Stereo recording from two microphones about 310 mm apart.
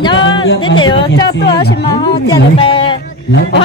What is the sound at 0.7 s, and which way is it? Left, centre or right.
Speech, left.